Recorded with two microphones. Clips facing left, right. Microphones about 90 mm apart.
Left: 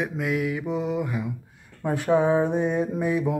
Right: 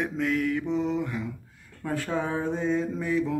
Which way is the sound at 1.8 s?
20° left (ahead or behind).